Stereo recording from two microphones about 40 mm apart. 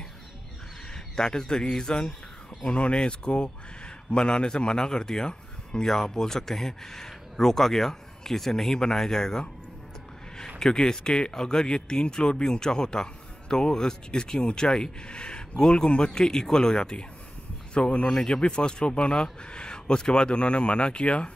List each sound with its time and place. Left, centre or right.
0.9 s speech: centre
10.6 s speech: centre